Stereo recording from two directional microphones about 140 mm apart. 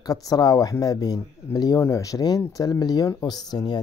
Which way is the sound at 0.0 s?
25° left (ahead or behind).